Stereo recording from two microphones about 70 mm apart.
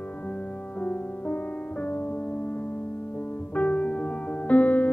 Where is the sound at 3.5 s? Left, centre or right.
Centre.